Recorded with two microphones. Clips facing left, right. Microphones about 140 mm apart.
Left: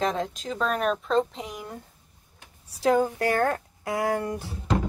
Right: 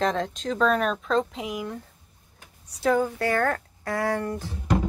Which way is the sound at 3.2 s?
35° left (ahead or behind).